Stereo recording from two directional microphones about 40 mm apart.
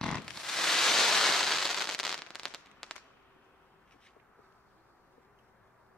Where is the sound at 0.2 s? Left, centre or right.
Centre.